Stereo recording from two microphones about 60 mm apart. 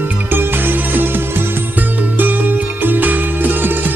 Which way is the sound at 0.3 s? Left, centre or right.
Right.